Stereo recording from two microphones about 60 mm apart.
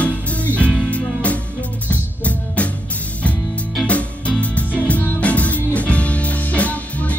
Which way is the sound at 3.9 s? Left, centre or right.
Left.